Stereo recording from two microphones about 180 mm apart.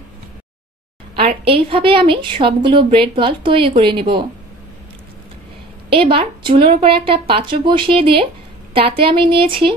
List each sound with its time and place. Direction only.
1.1 s a woman's voice: 30° right (ahead or behind)
5.9 s a woman's voice: 30° right (ahead or behind)